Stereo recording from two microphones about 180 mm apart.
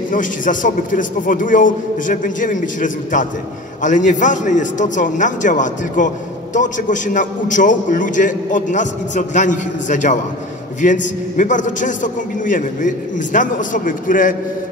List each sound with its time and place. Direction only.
0.1 s a man's voice: 45° left (ahead or behind)